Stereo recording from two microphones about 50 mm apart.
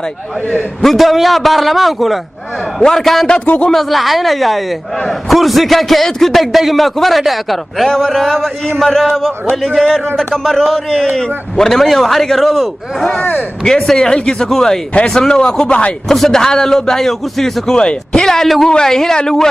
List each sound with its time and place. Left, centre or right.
0.8 s a man's voice: centre
3.4 s speech: left
3.7 s a man's voice: centre
13.7 s a man's voice: centre
16.1 s a man's voice: centre